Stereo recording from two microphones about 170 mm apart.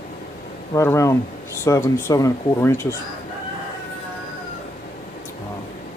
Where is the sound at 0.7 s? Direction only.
15° left (ahead or behind).